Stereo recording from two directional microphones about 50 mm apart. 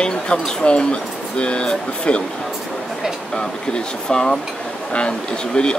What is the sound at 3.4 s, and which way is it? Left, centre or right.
Speech, centre.